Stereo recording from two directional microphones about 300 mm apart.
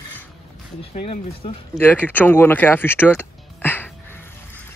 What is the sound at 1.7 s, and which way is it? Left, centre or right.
Music, centre.